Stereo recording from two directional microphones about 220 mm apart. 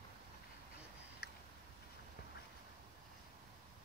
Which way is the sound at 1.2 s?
45° left (ahead or behind).